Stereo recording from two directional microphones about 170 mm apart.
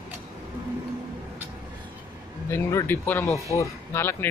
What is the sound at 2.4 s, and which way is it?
Speech, 15° left (ahead or behind).